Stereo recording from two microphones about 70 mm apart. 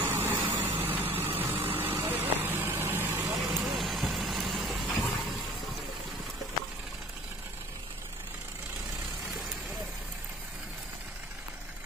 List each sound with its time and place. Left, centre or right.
0.0 s vehicle: right
3.6 s vehicle: centre